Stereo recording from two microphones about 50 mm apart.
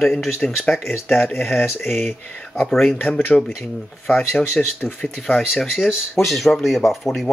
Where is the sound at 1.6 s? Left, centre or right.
Left.